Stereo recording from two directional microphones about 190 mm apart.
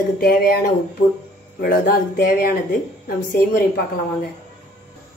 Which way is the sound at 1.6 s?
50° left (ahead or behind).